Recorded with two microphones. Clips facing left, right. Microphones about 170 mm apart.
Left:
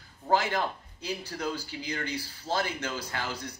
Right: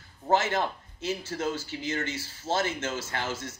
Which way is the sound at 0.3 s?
25° right (ahead or behind).